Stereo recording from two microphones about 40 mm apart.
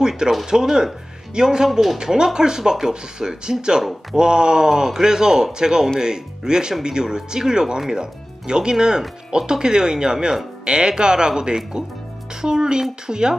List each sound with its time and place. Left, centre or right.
0.5 s speech: centre
1.7 s speech: centre
2.0 s speech: centre